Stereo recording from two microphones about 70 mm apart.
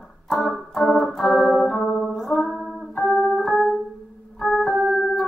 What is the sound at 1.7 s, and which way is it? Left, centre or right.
Music, centre.